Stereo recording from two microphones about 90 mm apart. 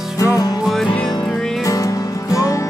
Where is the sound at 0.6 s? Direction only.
Centre (ahead or behind).